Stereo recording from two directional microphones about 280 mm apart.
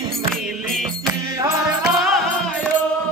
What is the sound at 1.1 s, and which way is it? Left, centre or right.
Music, centre.